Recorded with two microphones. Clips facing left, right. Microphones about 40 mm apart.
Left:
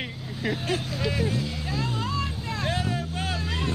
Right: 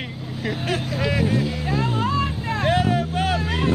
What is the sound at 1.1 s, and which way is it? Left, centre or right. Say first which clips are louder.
Vehicle: right 6 dB; right.